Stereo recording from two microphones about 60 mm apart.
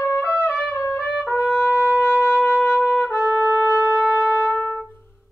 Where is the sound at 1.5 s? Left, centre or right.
Left.